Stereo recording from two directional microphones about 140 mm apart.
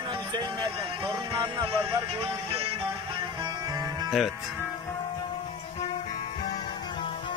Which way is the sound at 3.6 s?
25° right (ahead or behind).